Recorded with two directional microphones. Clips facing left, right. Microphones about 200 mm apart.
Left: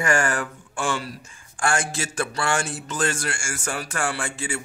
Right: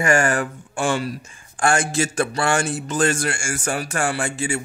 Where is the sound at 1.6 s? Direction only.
20° right (ahead or behind).